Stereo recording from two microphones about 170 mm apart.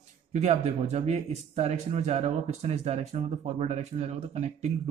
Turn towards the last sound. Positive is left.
turn(degrees=-40)  # may be behind; listen again after turning